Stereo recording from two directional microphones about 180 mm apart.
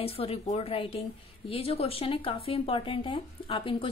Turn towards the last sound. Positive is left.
turn(degrees=30)  # may be behind; listen again after turning